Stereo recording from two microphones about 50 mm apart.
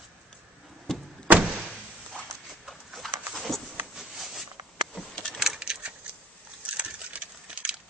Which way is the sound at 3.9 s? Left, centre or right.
Centre.